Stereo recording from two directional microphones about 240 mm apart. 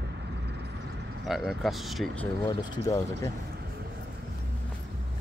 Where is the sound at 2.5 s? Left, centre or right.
Centre.